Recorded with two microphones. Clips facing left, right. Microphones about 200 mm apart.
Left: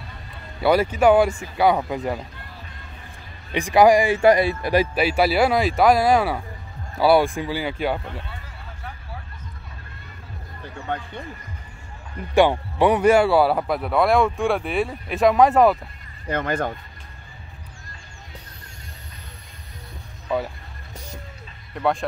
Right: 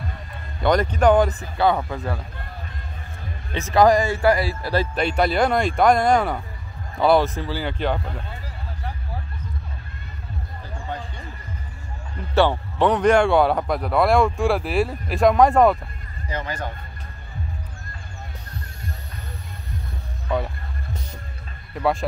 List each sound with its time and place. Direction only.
0.6 s speech: 5° left (ahead or behind)
3.5 s speech: 15° left (ahead or behind)
4.9 s speech: 5° left (ahead or behind)
10.9 s a sound: 60° left (ahead or behind)
12.4 s speech: 10° left (ahead or behind)
16.3 s speech: 55° left (ahead or behind)
20.2 s music: 5° left (ahead or behind)